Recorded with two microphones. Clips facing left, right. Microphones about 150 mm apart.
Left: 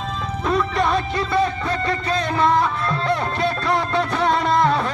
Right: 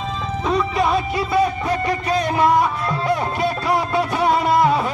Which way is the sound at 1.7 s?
15° right (ahead or behind).